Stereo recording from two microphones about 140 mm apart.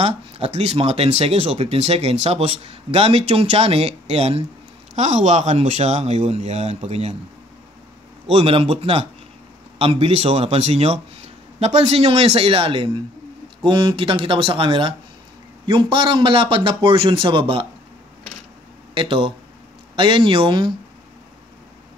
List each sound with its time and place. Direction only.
0.0 s speech: 50° right (ahead or behind)
8.4 s a man's voice: 40° right (ahead or behind)
18.9 s a man's voice: 40° right (ahead or behind)